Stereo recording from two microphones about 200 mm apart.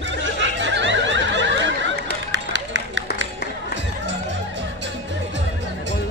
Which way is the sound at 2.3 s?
65° right (ahead or behind).